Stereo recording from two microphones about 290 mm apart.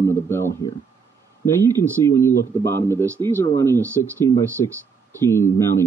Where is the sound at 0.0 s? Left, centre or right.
Centre.